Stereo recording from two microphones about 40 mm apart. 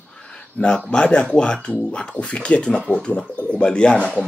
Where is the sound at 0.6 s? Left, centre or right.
Left.